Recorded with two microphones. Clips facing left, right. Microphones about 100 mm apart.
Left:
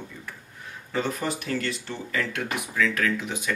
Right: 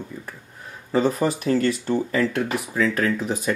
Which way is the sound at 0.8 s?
35° right (ahead or behind).